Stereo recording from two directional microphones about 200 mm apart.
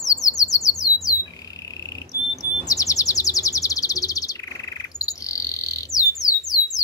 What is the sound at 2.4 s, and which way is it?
Chirp, 15° left (ahead or behind).